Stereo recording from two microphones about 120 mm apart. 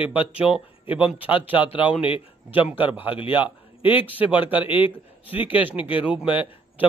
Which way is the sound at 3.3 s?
15° right (ahead or behind).